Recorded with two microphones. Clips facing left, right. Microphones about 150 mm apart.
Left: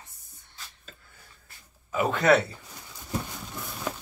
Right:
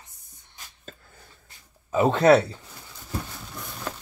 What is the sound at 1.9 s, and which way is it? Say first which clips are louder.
Speech: right 5 dB; 30° right (ahead or behind).